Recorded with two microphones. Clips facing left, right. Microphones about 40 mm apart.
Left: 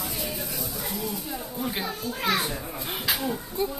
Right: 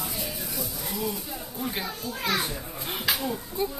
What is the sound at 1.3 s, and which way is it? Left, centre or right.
A woman's voice, centre.